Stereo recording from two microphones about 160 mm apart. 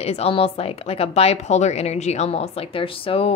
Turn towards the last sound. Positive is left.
turn(degrees=35)  # may be behind; listen again after turning